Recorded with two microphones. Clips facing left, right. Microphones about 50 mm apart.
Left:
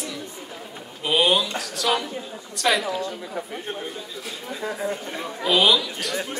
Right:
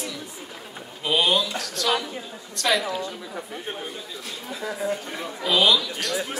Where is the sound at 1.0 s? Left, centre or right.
Centre.